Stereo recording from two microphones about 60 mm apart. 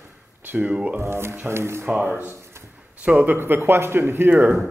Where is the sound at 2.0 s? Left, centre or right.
Right.